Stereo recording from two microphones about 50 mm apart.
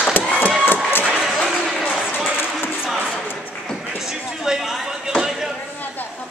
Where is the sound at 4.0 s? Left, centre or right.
Centre.